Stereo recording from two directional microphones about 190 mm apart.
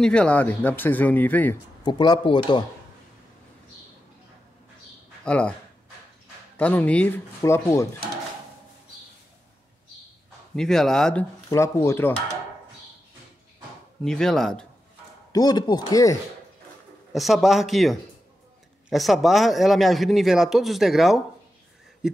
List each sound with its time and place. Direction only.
0.0 s speech: 5° left (ahead or behind)
1.8 s speech: 25° left (ahead or behind)
5.2 s speech: 5° left (ahead or behind)
6.5 s speech: 10° left (ahead or behind)
10.5 s speech: centre (ahead or behind)
11.4 s speech: 15° left (ahead or behind)
14.0 s speech: 5° left (ahead or behind)
15.3 s speech: 20° left (ahead or behind)
17.1 s speech: centre (ahead or behind)